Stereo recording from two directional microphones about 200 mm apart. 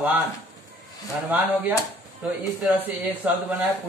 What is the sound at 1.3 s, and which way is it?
Speech, 5° right (ahead or behind).